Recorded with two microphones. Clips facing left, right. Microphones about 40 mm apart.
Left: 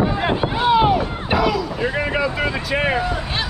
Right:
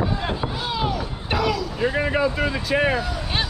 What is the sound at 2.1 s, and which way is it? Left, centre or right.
Vehicle, left.